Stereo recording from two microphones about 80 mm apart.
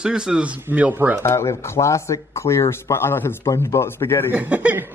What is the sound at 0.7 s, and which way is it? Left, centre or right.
Speech, right.